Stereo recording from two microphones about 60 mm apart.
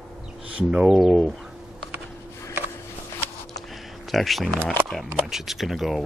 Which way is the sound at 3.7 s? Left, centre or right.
Centre.